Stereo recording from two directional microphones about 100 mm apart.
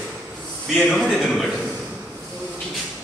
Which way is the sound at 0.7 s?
Centre (ahead or behind).